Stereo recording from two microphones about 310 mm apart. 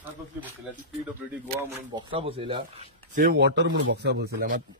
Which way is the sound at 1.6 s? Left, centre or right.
Centre.